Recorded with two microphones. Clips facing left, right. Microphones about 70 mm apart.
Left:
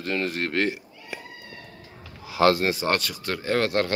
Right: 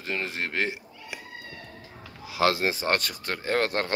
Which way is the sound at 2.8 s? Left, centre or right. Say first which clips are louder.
Left 2 dB; right.